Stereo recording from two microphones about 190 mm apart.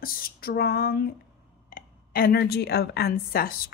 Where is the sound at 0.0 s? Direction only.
50° left (ahead or behind).